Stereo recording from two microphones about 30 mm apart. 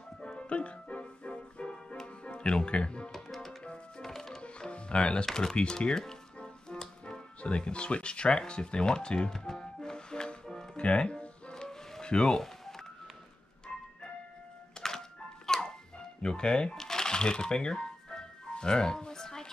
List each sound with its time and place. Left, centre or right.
0.2 s music: left
4.0 s music: centre
4.4 s music: left
5.3 s speech: left
6.4 s music: left
7.4 s speech: left
9.5 s music: centre
10.8 s music: left
11.5 s music: left
12.1 s speech: left
12.4 s telephone dialing: centre
13.7 s music: left
16.2 s speech: left
16.7 s music: centre